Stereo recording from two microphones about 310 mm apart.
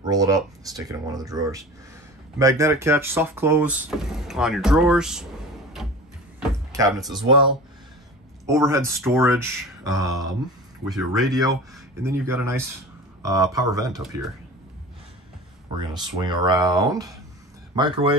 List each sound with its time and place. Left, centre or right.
0.0 s speech: centre
8.5 s speech: centre
15.9 s speech: centre